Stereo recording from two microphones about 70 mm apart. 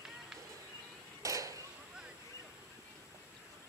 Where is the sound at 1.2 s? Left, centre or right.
Right.